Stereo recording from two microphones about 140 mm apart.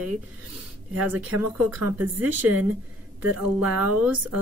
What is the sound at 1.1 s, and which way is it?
Speech, 15° right (ahead or behind).